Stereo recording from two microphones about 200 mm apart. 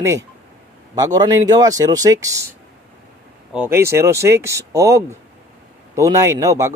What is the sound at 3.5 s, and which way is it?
Speech, 10° right (ahead or behind).